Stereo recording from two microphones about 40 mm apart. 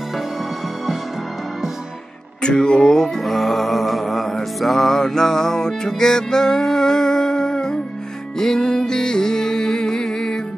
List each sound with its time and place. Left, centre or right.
2.4 s music: left
3.2 s music: centre